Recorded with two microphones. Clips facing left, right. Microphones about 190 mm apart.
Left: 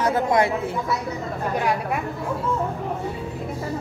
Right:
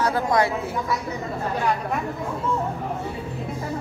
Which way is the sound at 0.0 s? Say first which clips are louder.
Left 1 dB; 20° left (ahead or behind).